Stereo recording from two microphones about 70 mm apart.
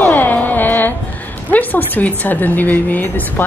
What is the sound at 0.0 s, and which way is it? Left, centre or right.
Music, left.